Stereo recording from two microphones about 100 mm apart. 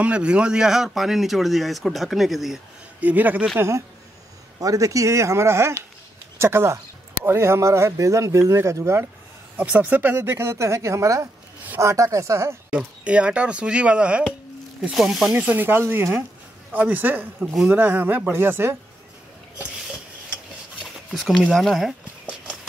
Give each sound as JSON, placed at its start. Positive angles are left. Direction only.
{"t": 0.0, "sound": "speech", "side_deg": -10}
{"t": 3.0, "sound": "speech", "side_deg": -15}
{"t": 3.5, "sound": "speech", "side_deg": -25}
{"t": 9.6, "sound": "speech", "side_deg": -15}
{"t": 12.7, "sound": "speech", "side_deg": -10}
{"t": 15.3, "sound": "speech", "side_deg": -15}
{"t": 20.8, "sound": "a sound", "side_deg": 0}
{"t": 21.5, "sound": "speech", "side_deg": 0}